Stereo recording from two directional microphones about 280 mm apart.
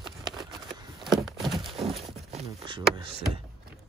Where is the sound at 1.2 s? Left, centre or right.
Centre.